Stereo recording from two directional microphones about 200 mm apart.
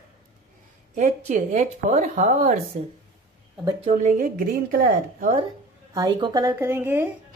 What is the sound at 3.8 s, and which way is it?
A woman's voice, 40° right (ahead or behind).